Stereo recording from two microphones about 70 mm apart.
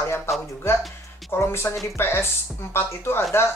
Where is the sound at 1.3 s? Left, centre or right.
Left.